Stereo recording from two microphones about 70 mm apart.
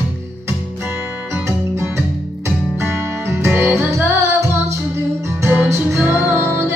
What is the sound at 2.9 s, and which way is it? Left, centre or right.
Music, right.